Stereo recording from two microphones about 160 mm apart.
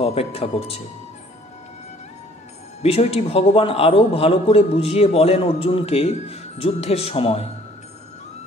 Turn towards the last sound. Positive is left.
turn(degrees=40)  # may be behind; listen again after turning